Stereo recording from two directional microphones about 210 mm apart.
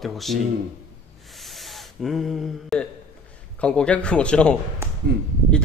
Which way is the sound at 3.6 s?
5° left (ahead or behind).